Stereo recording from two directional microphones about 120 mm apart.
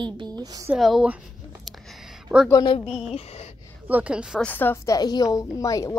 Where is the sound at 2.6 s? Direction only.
50° left (ahead or behind).